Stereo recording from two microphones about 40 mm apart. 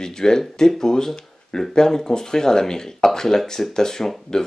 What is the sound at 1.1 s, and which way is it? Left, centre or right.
Speech, centre.